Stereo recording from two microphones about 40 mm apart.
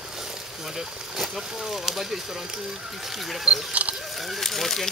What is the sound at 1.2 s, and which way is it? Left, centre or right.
Speech, centre.